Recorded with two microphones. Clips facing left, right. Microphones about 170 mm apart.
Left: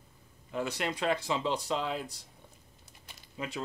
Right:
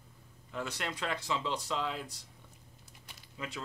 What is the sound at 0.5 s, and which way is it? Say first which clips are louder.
Speech: left 5 dB; 15° left (ahead or behind).